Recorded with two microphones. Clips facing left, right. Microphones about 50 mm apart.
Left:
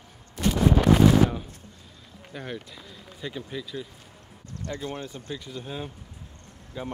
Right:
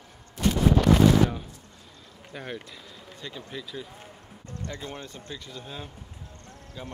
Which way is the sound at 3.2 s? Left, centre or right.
Centre.